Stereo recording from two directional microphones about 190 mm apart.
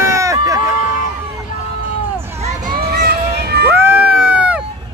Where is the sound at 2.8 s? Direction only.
55° right (ahead or behind).